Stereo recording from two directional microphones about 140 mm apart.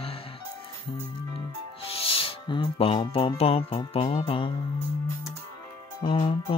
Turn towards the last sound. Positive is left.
turn(degrees=40)  # may be behind; listen again after turning